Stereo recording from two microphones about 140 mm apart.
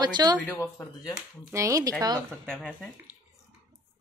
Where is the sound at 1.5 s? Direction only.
25° right (ahead or behind).